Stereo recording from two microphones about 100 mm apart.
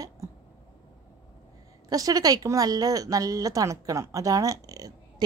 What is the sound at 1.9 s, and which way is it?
A woman's voice, 40° right (ahead or behind).